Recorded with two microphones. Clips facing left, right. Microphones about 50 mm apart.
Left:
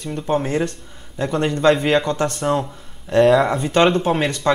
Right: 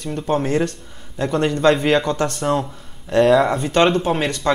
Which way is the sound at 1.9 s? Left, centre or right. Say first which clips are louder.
Even; left.